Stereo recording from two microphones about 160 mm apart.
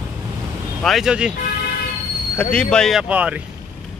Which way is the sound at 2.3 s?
10° left (ahead or behind).